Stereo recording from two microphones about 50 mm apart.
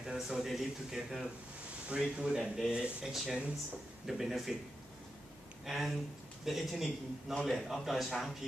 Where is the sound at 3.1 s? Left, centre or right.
Centre.